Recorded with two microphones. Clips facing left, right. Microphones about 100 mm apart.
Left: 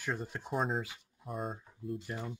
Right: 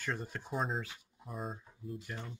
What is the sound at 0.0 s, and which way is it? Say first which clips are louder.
Speech: left 2 dB; 5° left (ahead or behind).